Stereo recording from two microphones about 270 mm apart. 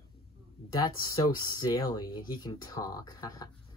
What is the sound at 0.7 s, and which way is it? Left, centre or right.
Speech, centre.